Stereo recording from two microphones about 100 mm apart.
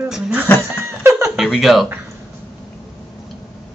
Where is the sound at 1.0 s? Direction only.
25° right (ahead or behind).